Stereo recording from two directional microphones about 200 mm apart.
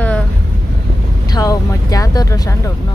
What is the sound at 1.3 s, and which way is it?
Speech, 15° left (ahead or behind).